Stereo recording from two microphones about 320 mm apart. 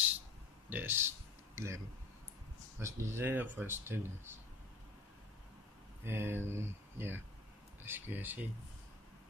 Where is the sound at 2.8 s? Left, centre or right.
Centre.